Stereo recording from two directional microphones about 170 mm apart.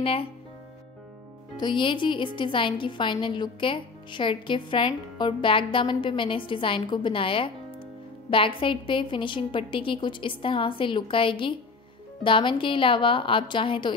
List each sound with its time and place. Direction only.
0.0 s speech: 35° left (ahead or behind)
1.6 s a woman's voice: 30° left (ahead or behind)